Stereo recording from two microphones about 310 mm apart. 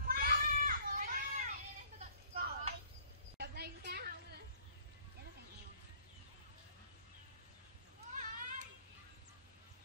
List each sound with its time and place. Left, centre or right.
0.0 s children playing: right
2.0 s vehicle: centre
3.3 s a sound: right
8.2 s children playing: right